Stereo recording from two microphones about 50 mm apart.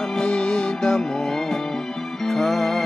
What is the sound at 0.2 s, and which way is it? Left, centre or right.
Music, centre.